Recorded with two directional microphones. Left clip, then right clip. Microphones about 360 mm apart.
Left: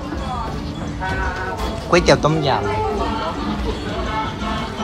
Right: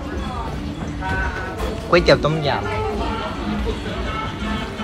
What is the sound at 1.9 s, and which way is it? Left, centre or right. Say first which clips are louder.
Speech: even; centre.